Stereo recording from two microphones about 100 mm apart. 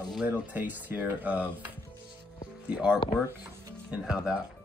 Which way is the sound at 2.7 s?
10° right (ahead or behind).